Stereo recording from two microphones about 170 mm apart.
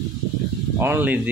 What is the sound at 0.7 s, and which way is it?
Speech, 15° right (ahead or behind).